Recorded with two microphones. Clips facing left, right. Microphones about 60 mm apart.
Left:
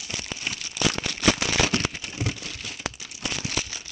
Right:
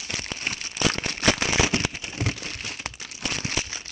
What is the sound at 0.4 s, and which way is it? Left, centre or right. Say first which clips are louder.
Crumpling: even; right.